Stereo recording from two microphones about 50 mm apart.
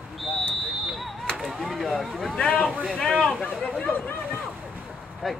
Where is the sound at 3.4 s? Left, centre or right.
Left.